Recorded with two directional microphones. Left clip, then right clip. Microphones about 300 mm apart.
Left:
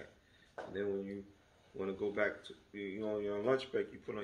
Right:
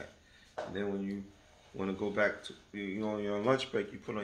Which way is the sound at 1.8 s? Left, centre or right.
Centre.